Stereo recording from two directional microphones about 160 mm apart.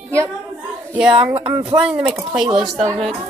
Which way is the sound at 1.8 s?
5° right (ahead or behind).